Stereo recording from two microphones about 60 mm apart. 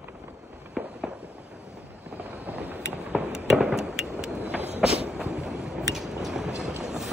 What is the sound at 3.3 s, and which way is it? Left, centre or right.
Fireworks, centre.